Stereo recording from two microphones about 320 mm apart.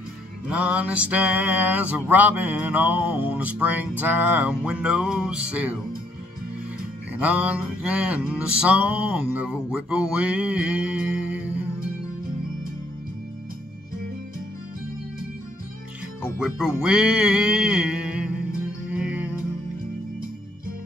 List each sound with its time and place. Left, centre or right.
0.5 s mantra: centre
7.2 s mantra: centre
16.2 s mantra: centre
18.9 s music: centre